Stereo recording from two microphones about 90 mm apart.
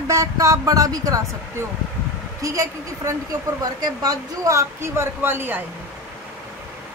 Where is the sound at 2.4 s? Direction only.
35° right (ahead or behind).